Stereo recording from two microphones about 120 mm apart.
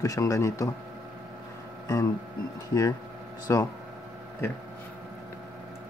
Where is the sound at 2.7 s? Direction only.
30° left (ahead or behind).